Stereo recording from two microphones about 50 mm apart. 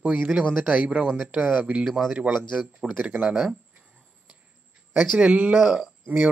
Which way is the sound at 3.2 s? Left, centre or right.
Centre.